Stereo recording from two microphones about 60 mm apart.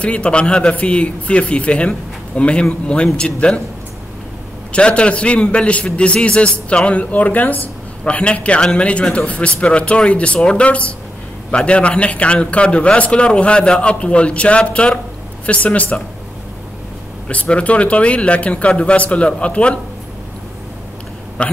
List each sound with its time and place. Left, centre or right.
0.0 s a man's voice: centre
4.7 s a man's voice: centre
17.3 s a man's voice: left
21.4 s a man's voice: centre